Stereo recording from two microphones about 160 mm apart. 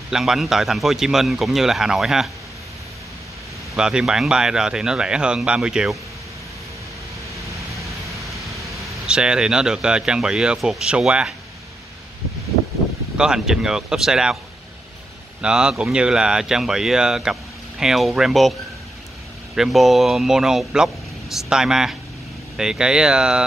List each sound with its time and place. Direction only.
0.1 s speech: centre (ahead or behind)
3.7 s speech: 5° right (ahead or behind)
7.4 s vehicle: 20° right (ahead or behind)
8.8 s speech: 5° right (ahead or behind)
13.2 s speech: 5° right (ahead or behind)
15.4 s speech: 5° right (ahead or behind)
19.5 s speech: centre (ahead or behind)